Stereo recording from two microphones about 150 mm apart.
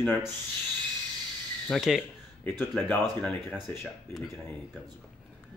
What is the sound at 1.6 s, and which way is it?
Speech, centre (ahead or behind).